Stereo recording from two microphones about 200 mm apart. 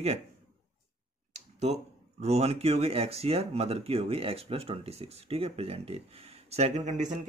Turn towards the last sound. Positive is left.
turn(degrees=-35)  # may be behind; listen again after turning